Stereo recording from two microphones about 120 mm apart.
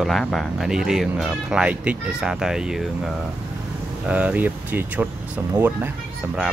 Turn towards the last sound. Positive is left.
turn(degrees=-20)  # may be behind; listen again after turning